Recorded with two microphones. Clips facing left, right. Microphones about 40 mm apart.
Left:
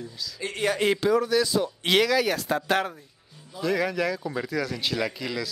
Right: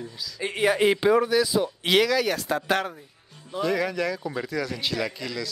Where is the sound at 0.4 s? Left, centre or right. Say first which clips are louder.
Right 4 dB; centre.